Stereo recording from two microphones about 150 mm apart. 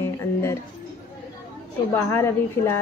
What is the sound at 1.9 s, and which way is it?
Speech, 15° left (ahead or behind).